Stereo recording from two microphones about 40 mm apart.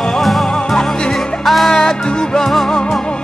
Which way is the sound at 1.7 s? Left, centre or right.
Centre.